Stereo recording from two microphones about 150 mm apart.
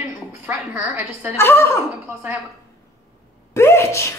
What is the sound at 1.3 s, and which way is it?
Speech, 15° left (ahead or behind).